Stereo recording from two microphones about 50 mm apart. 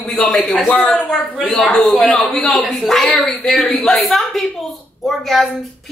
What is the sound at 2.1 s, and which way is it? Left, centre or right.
A woman's voice, centre.